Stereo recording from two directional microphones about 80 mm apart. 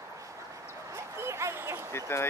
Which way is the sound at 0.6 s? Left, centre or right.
Right.